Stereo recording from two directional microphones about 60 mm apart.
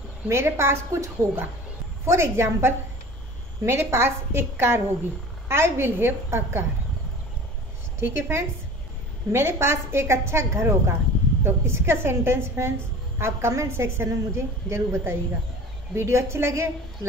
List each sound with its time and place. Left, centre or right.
0.3 s a woman's voice: right
8.0 s a woman's voice: right